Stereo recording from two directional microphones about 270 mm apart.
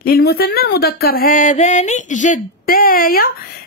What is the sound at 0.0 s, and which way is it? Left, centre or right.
A woman's voice, left.